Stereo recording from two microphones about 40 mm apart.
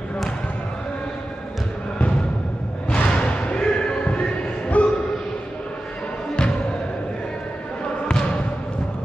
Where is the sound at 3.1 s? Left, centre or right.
Left.